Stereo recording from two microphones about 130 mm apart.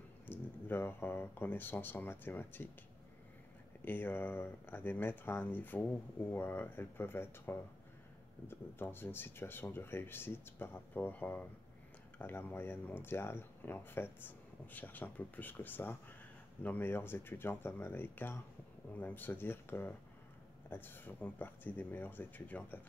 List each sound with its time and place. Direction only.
0.3 s speech: 15° left (ahead or behind)
3.8 s speech: 15° left (ahead or behind)